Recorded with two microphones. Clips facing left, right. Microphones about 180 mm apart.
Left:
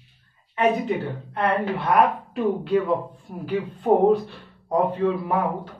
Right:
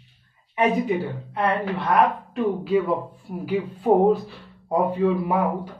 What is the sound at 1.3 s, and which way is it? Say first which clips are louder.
A woman's voice: even; centre (ahead or behind).